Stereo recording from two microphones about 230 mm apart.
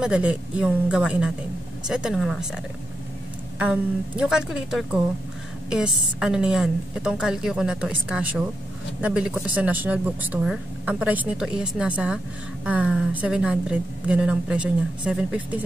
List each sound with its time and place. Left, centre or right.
0.0 s speech: centre